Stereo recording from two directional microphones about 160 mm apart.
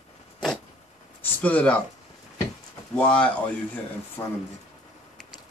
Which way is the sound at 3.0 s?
10° left (ahead or behind).